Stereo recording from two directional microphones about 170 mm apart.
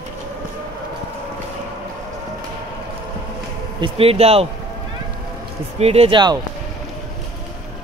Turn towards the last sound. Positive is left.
turn(degrees=-25)  # may be behind; listen again after turning